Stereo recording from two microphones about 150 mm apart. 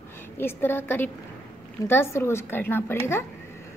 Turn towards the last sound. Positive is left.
turn(degrees=15)  # may be behind; listen again after turning